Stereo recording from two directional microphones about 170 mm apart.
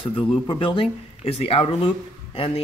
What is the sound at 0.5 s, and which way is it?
Speech, 30° left (ahead or behind).